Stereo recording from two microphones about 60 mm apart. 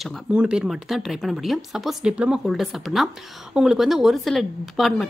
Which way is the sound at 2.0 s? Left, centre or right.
Centre.